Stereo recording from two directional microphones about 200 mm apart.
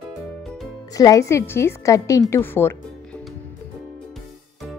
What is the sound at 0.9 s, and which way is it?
A woman's voice, 15° left (ahead or behind).